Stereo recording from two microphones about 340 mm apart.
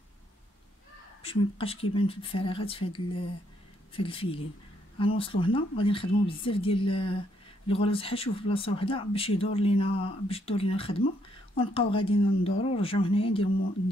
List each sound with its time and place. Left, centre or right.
1.2 s speech: centre